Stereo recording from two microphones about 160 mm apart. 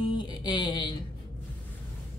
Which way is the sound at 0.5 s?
25° left (ahead or behind).